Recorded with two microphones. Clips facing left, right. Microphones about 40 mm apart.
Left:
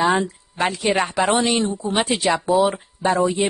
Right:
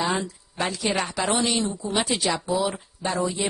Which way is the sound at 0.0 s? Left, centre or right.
Left.